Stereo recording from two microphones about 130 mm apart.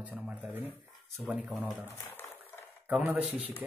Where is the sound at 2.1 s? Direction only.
15° left (ahead or behind).